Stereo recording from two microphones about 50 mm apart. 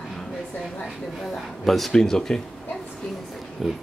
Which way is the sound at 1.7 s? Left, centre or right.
Centre.